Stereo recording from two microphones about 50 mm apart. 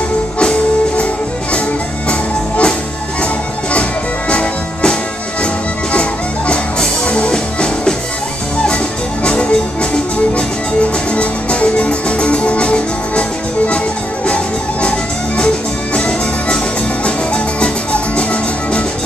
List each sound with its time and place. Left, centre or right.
0.4 s music: centre
2.0 s music: left
4.3 s music: left
5.9 s music: left
9.2 s music: centre
14.2 s music: left